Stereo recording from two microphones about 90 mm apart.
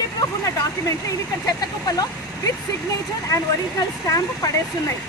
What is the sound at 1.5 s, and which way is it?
Speech, 45° left (ahead or behind).